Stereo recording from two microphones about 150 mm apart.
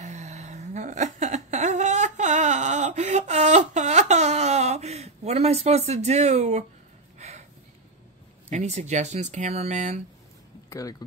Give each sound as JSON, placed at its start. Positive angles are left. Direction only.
{"t": 0.0, "sound": "a sound", "side_deg": -50}
{"t": 7.2, "sound": "snort", "side_deg": -50}
{"t": 8.5, "sound": "speech", "side_deg": -50}
{"t": 10.7, "sound": "speech", "side_deg": 25}